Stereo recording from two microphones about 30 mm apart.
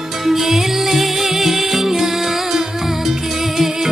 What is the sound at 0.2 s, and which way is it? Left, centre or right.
Music, centre.